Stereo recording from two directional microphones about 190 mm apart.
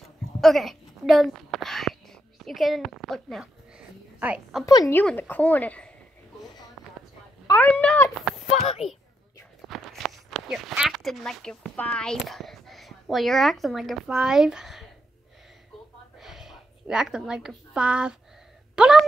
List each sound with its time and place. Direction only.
0.4 s a sound: centre (ahead or behind)
4.6 s a woman's voice: 20° left (ahead or behind)
7.4 s speech: 10° left (ahead or behind)
8.5 s speech: 35° left (ahead or behind)
9.7 s speech: centre (ahead or behind)
16.2 s a sound: centre (ahead or behind)